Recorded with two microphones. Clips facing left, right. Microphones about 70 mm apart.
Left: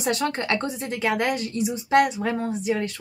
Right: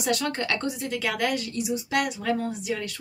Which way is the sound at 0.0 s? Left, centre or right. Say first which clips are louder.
Left 2 dB; left.